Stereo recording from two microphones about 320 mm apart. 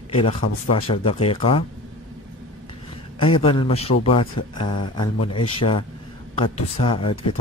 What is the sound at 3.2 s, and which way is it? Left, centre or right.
A woman's voice, centre.